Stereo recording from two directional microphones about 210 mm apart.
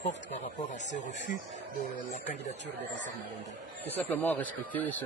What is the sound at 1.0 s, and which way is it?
Speech, 35° left (ahead or behind).